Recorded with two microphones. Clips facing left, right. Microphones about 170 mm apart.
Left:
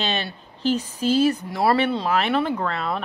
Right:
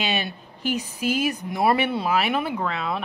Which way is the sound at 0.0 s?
10° right (ahead or behind).